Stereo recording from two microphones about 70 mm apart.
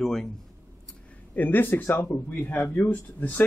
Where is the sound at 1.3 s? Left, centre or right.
Left.